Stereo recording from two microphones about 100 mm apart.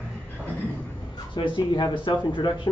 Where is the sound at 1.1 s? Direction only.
55° left (ahead or behind).